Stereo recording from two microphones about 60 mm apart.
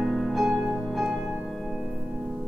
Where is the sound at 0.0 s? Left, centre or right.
Centre.